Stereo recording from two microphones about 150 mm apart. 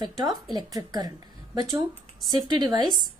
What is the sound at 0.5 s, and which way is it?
Speech, 25° right (ahead or behind).